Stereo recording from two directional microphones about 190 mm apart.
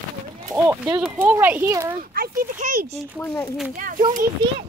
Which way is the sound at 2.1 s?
50° right (ahead or behind).